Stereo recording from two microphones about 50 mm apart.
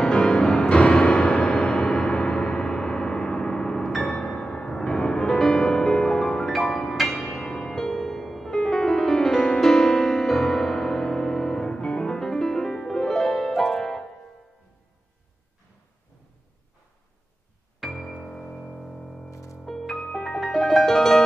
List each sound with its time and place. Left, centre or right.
0.0 s music: centre
0.7 s gong: left
4.0 s music: centre
13.5 s music: centre
13.7 s music: centre
17.8 s music: centre
18.3 s music: centre
19.3 s music: left
19.6 s music: centre